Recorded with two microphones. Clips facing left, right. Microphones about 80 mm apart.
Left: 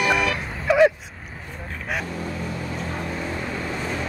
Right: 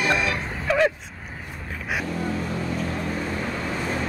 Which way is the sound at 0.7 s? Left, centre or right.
Centre.